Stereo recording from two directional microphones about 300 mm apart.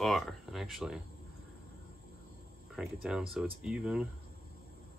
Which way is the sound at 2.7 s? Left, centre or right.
Centre.